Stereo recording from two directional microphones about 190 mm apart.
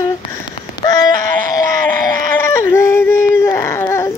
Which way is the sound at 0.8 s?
20° left (ahead or behind).